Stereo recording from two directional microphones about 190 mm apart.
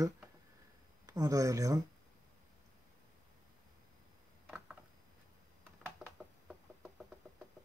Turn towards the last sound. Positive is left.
turn(degrees=-5)  # may be behind; listen again after turning